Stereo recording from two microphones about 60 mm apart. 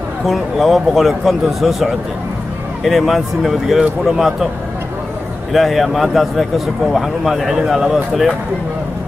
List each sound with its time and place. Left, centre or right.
0.3 s speech: centre
5.5 s speech: centre